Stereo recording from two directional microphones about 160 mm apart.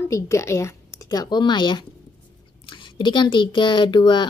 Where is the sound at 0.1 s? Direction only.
20° left (ahead or behind).